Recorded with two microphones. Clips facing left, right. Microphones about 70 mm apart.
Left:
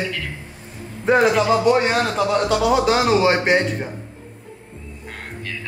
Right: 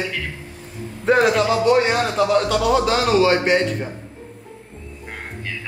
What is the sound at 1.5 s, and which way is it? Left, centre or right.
A man's voice, left.